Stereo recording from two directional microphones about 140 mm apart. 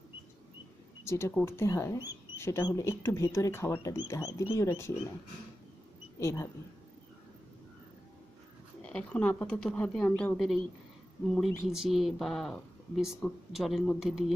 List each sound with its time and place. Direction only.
1.0 s speech: 20° left (ahead or behind)
6.1 s speech: 20° left (ahead or behind)
8.8 s speech: 10° left (ahead or behind)